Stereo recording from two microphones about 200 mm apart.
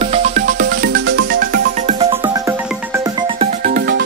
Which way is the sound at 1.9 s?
30° right (ahead or behind).